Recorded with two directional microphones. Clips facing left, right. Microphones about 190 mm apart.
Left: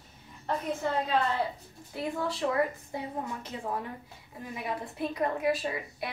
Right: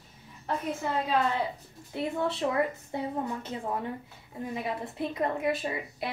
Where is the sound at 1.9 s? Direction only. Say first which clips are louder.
Right 3 dB; 25° right (ahead or behind).